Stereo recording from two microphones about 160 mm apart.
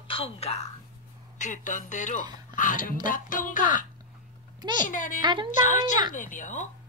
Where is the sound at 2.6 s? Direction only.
55° left (ahead or behind).